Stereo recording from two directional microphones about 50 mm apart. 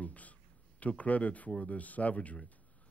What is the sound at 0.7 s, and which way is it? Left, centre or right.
Speech, left.